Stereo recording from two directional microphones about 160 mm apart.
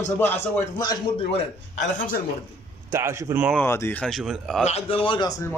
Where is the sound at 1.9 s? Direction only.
60° left (ahead or behind).